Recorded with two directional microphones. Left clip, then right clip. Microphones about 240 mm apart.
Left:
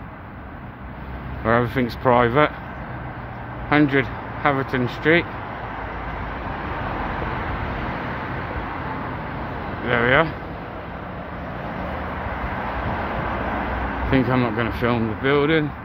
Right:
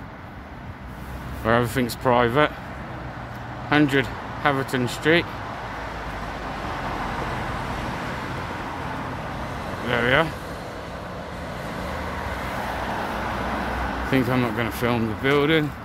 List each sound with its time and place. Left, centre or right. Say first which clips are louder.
1.4 s speech: left 1 dB; centre
3.7 s speech: left 2 dB; centre
9.8 s speech: left 3 dB; centre
14.1 s speech: left 3 dB; centre